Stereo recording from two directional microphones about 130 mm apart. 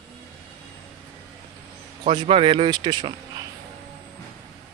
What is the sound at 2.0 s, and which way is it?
Speech, 45° right (ahead or behind).